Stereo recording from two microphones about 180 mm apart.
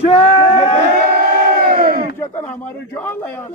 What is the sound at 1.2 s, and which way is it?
Crowd, 55° right (ahead or behind).